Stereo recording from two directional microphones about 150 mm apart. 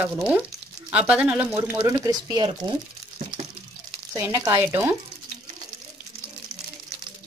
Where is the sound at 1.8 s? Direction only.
20° right (ahead or behind).